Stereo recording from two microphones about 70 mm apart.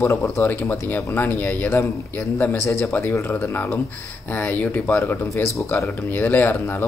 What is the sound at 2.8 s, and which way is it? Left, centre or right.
Speech, left.